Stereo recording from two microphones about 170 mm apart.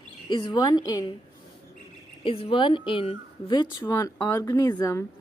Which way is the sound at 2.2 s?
30° left (ahead or behind).